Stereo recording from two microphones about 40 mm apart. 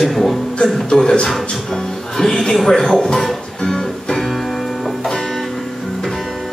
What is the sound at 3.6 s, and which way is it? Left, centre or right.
Music, centre.